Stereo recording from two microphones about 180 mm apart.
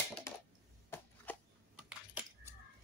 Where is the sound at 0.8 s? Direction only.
10° left (ahead or behind).